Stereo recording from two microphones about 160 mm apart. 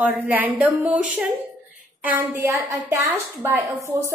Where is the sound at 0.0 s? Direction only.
10° right (ahead or behind).